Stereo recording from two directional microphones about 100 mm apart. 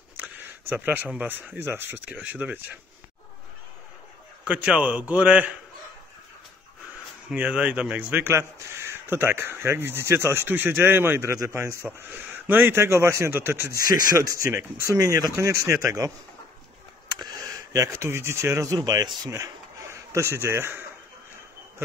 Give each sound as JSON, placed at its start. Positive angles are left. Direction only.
{"t": 0.4, "sound": "speech", "side_deg": -20}
{"t": 4.5, "sound": "speech", "side_deg": -10}
{"t": 7.2, "sound": "speech", "side_deg": -10}
{"t": 13.7, "sound": "speech", "side_deg": -40}
{"t": 17.2, "sound": "speech", "side_deg": -35}